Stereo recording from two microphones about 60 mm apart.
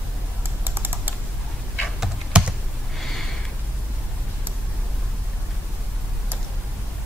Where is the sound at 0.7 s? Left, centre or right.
Right.